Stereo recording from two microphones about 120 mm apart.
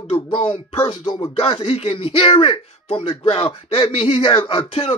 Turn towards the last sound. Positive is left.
turn(degrees=50)  # may be behind; listen again after turning